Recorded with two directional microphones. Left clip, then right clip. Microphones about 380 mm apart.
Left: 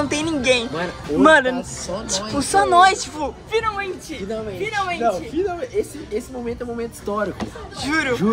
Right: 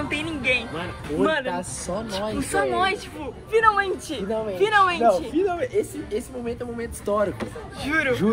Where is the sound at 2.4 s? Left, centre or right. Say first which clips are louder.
Left 10 dB; centre.